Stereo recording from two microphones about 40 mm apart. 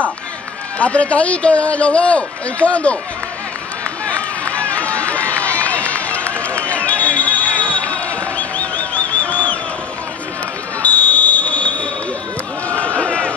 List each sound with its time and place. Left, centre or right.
0.7 s a man's voice: left
4.0 s run: left
6.9 s crowd: left
8.1 s a sound: left
10.8 s fire alarm: left
12.8 s a sound: left